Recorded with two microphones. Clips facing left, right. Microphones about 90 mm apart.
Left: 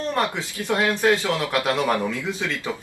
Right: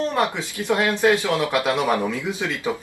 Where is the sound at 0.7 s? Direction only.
20° right (ahead or behind).